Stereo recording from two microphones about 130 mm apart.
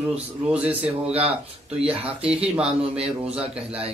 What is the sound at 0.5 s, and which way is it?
Speech, 10° right (ahead or behind).